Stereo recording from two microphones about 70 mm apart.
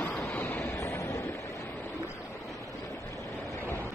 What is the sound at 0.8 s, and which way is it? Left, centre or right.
Vehicle, left.